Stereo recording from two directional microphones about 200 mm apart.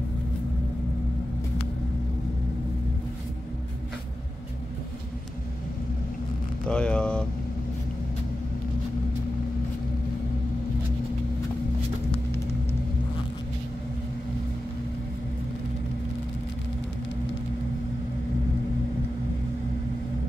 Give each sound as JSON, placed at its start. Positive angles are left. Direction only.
{"t": 6.7, "sound": "vehicle", "side_deg": 5}